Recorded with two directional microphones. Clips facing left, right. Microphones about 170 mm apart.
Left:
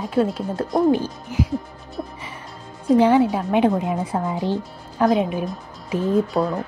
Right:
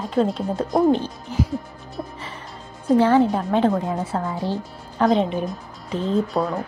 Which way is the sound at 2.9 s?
15° left (ahead or behind).